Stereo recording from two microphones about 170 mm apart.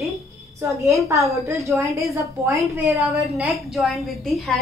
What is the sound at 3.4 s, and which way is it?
A woman's voice, centre (ahead or behind).